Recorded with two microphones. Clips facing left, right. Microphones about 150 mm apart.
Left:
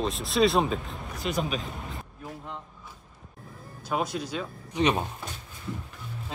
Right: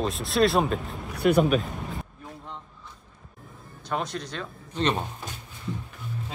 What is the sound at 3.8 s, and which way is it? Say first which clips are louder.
Speech: left 1 dB; 5° left (ahead or behind).